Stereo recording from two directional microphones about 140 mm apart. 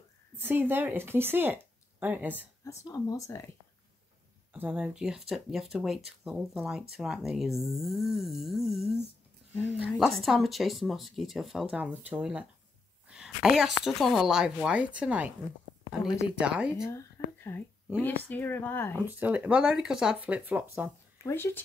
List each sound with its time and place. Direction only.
0.4 s a woman's voice: 15° right (ahead or behind)
2.6 s speech: 25° left (ahead or behind)
4.5 s a woman's voice: 10° right (ahead or behind)
16.3 s a woman's voice: 10° right (ahead or behind)
16.8 s whispering: 20° left (ahead or behind)
18.3 s speech: 15° left (ahead or behind)
19.0 s a woman's voice: 15° right (ahead or behind)
21.2 s speech: 20° left (ahead or behind)